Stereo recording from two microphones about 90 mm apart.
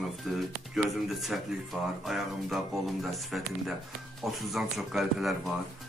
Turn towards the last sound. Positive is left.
turn(degrees=0)  # may be behind; listen again after turning